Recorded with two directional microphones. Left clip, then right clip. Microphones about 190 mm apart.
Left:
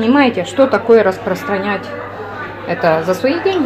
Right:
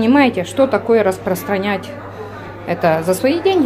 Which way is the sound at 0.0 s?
10° right (ahead or behind).